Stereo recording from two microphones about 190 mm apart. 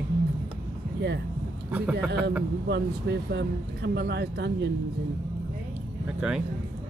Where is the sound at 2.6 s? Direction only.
65° right (ahead or behind).